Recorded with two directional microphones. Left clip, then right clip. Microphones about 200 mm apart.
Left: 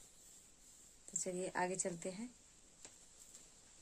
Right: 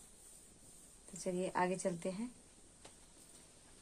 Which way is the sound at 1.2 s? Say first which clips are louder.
Right 3 dB; 10° left (ahead or behind).